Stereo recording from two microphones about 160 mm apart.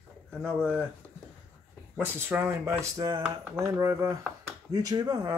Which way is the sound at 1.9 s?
15° right (ahead or behind).